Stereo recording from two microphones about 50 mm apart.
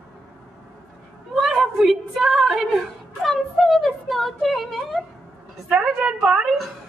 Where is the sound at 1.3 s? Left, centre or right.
Centre.